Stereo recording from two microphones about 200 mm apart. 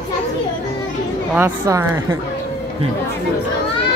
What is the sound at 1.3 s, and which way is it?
Speech, 10° right (ahead or behind).